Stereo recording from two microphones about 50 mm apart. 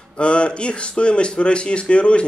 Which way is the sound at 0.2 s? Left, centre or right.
Left.